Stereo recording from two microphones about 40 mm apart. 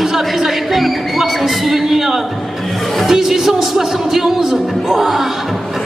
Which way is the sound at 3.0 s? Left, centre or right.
Centre.